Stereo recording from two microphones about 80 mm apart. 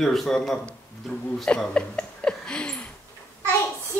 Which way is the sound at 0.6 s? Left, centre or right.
Centre.